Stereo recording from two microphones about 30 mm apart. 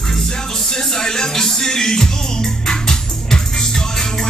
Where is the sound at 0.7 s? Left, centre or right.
Centre.